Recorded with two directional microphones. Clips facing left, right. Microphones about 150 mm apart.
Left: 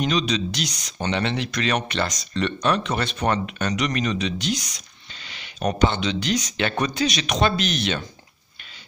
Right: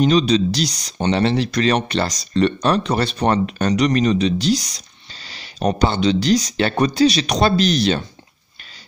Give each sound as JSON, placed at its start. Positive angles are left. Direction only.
{"t": 0.0, "sound": "speech", "side_deg": -35}